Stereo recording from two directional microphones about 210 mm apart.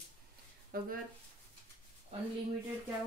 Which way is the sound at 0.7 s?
45° right (ahead or behind).